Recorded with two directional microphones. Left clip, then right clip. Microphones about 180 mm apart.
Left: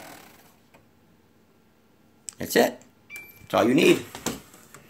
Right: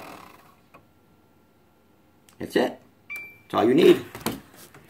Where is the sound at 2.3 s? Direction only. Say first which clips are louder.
Left 3 dB; 45° left (ahead or behind).